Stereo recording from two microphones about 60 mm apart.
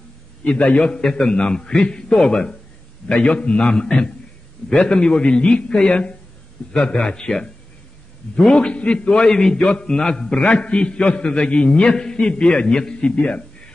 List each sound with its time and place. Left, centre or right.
0.4 s a man's voice: left
1.0 s a man's voice: centre